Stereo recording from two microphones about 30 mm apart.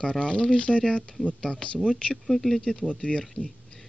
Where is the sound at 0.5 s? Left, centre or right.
Left.